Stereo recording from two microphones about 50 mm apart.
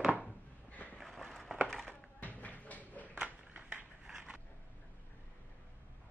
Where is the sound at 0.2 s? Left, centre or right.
Left.